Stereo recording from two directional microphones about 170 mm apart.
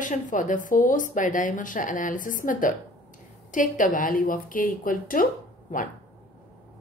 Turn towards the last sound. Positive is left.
turn(degrees=50)  # may be behind; listen again after turning